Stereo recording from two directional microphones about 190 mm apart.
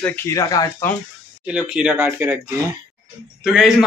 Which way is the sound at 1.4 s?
5° right (ahead or behind).